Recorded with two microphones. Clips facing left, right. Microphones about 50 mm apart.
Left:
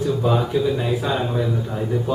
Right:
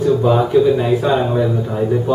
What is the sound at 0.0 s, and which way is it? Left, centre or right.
Speech, centre.